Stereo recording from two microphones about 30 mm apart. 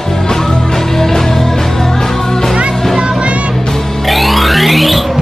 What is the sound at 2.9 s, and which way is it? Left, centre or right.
Music, right.